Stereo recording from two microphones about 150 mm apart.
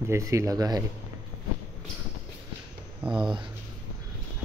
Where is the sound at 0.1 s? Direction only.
20° right (ahead or behind).